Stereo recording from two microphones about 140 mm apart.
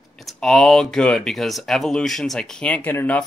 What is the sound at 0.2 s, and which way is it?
Speech, centre (ahead or behind).